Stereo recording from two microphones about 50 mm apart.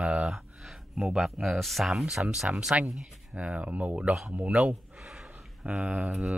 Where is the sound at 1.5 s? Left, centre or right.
Centre.